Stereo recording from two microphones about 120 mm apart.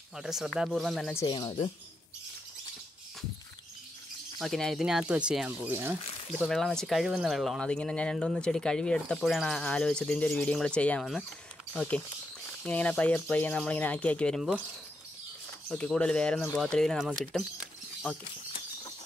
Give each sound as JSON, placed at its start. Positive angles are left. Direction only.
{"t": 0.1, "sound": "speech", "side_deg": -5}
{"t": 4.4, "sound": "speech", "side_deg": 0}
{"t": 5.7, "sound": "speech", "side_deg": -20}
{"t": 6.4, "sound": "speech", "side_deg": 5}
{"t": 15.7, "sound": "speech", "side_deg": 10}